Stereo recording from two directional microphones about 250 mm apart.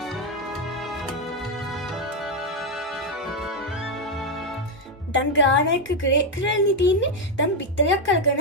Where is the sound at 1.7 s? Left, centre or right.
Centre.